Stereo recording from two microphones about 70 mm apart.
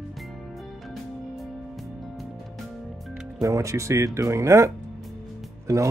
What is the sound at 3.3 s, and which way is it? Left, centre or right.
Speech, right.